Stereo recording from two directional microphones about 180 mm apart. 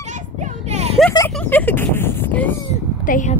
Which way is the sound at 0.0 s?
40° right (ahead or behind).